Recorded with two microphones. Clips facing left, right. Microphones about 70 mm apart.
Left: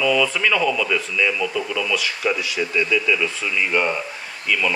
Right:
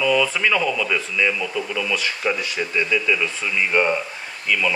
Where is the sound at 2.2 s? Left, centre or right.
Right.